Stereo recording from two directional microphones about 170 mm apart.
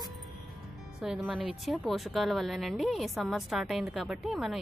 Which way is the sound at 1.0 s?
5° right (ahead or behind).